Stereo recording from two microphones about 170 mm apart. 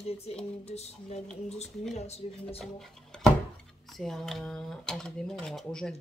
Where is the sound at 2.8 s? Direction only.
5° left (ahead or behind).